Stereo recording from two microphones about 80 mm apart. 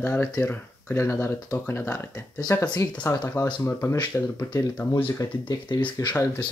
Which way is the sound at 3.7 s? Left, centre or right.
Left.